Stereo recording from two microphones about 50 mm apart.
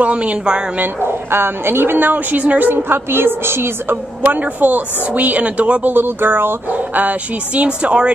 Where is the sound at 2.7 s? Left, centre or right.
Right.